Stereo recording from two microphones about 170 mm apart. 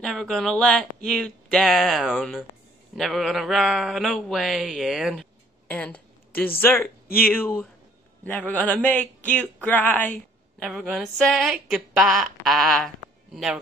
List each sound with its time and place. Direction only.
0.0 s a man's voice: centre (ahead or behind)
3.0 s a sound: centre (ahead or behind)
6.6 s a man's voice: 10° left (ahead or behind)